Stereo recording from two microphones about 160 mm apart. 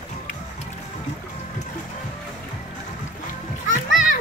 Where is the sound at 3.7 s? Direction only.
55° left (ahead or behind).